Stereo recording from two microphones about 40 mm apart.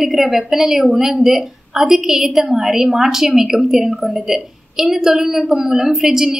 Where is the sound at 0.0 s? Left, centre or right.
Centre.